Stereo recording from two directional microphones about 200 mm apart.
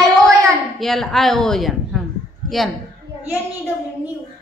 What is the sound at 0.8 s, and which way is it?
A man's voice, centre (ahead or behind).